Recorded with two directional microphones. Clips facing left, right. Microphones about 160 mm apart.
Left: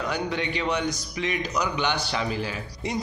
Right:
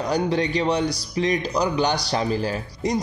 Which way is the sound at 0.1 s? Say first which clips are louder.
Right 6 dB; 35° right (ahead or behind).